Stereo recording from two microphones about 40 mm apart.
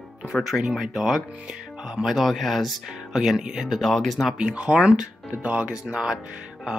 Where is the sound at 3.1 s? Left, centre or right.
Centre.